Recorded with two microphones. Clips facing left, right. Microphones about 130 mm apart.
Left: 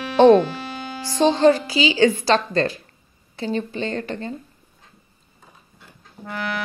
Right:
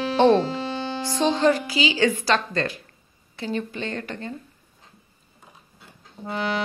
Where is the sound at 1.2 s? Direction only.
30° left (ahead or behind).